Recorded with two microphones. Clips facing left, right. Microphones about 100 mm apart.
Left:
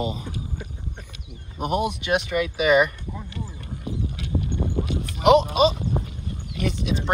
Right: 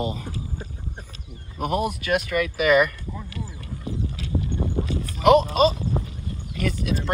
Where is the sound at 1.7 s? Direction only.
40° right (ahead or behind).